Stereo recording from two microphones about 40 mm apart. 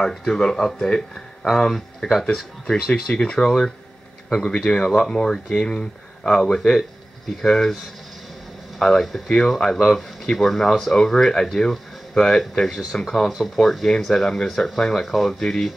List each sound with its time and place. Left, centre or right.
0.0 s speech: centre
1.5 s speech: centre
4.6 s speech: centre
8.7 s speech: centre